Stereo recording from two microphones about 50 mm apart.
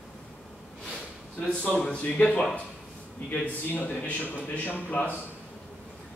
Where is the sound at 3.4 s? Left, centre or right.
Left.